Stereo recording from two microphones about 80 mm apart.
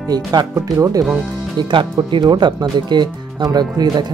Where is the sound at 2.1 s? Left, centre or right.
Right.